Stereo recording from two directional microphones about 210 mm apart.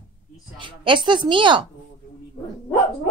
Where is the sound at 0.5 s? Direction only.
25° right (ahead or behind).